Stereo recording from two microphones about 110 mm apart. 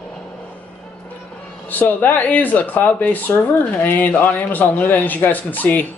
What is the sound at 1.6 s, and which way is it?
Speech, 15° left (ahead or behind).